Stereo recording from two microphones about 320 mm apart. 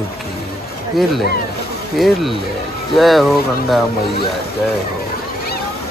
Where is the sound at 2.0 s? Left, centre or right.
Centre.